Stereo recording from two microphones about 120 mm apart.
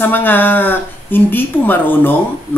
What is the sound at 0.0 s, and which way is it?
A woman's voice, 15° left (ahead or behind).